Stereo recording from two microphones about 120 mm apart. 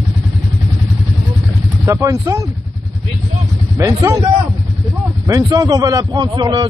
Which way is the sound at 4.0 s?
30° right (ahead or behind).